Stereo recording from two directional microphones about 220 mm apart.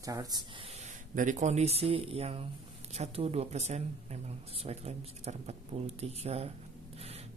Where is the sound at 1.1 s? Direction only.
35° right (ahead or behind).